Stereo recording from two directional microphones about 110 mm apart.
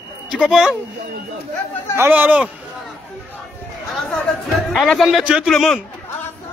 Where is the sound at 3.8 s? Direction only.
5° left (ahead or behind).